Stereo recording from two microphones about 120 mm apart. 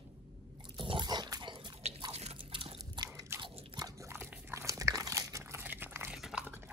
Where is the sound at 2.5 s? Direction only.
45° right (ahead or behind).